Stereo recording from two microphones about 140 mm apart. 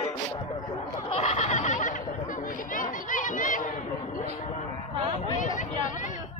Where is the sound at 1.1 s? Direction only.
50° left (ahead or behind).